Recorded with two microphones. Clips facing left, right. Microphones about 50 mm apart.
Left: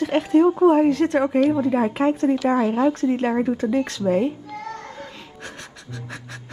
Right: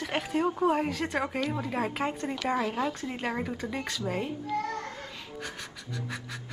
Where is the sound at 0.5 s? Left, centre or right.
Centre.